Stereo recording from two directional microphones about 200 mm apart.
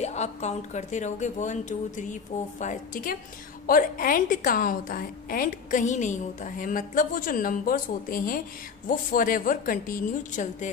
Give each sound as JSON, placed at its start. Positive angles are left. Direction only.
{"t": 0.0, "sound": "a woman's voice", "side_deg": 35}